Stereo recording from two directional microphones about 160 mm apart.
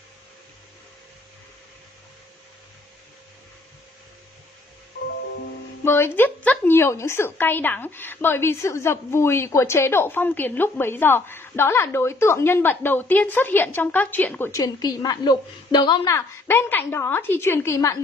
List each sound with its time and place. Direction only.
5.9 s a woman's voice: 15° left (ahead or behind)